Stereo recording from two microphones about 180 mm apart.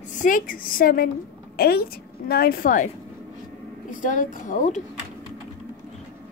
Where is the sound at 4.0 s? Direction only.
45° left (ahead or behind).